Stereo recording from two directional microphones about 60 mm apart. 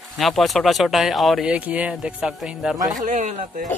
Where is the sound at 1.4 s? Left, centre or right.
Right.